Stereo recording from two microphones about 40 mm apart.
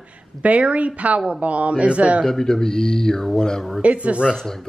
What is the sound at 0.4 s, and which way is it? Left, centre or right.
A woman's voice, right.